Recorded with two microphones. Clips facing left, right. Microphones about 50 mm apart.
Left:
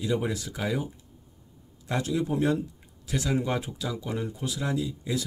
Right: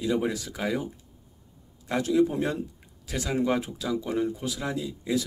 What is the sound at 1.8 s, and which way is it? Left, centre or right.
A man's voice, centre.